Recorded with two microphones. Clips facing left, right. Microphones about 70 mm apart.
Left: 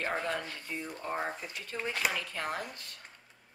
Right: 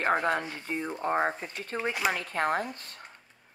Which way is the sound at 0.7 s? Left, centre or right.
Right.